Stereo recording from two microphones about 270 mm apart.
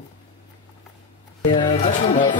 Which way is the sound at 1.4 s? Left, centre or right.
Centre.